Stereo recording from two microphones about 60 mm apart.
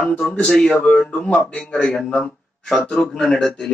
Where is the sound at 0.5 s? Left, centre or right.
Centre.